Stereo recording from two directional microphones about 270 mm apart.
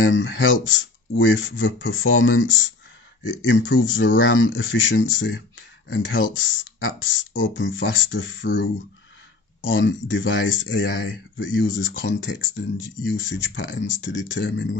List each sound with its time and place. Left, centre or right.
0.0 s speech: left